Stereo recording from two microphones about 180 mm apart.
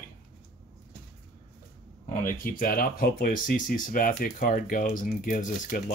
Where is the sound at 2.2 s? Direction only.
50° left (ahead or behind).